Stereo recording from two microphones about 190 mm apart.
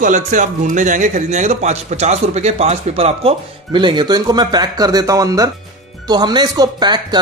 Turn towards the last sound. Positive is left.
turn(degrees=-20)  # may be behind; listen again after turning